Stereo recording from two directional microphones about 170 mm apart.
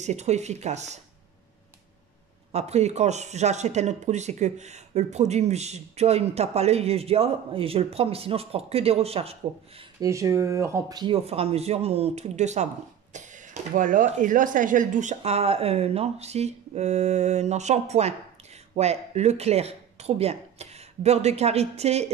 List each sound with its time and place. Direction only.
0.0 s speech: 40° right (ahead or behind)
2.5 s speech: 40° right (ahead or behind)
9.9 s speech: 20° right (ahead or behind)
11.2 s speech: 35° right (ahead or behind)